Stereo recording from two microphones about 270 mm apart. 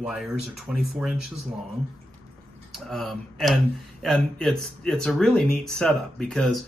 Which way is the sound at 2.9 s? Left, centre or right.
Centre.